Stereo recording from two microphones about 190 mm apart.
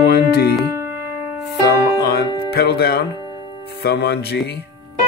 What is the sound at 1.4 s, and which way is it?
Music, 60° left (ahead or behind).